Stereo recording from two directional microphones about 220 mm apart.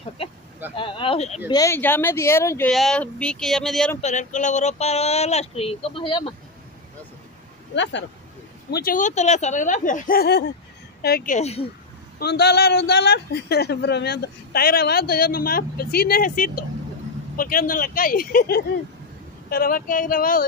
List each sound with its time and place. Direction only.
0.7 s speech: 20° left (ahead or behind)
1.5 s speech: 15° left (ahead or behind)
4.0 s speech: 35° left (ahead or behind)
7.7 s speech: 55° left (ahead or behind)
8.6 s speech: 45° left (ahead or behind)
12.2 s a man's voice: 50° left (ahead or behind)